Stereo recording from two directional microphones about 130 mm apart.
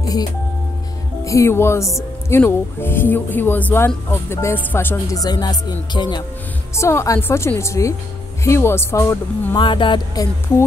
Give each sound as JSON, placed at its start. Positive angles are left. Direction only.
{"t": 1.2, "sound": "speech", "side_deg": 25}
{"t": 6.7, "sound": "speech", "side_deg": 20}
{"t": 9.6, "sound": "music", "side_deg": 40}